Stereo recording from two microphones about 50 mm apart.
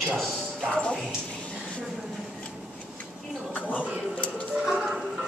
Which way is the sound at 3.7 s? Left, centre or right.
Left.